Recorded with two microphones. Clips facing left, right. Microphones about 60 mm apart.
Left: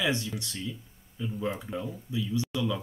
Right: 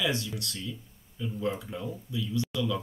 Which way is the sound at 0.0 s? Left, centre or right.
Centre.